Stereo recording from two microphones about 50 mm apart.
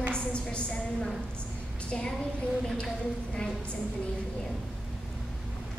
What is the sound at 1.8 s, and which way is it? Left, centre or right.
Speech, left.